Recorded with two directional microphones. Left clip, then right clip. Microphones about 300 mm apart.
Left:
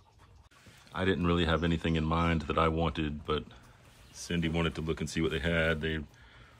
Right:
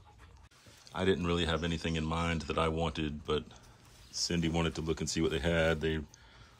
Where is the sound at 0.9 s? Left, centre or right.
Centre.